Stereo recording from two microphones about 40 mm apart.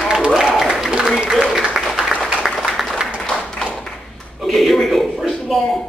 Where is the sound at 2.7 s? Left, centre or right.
Centre.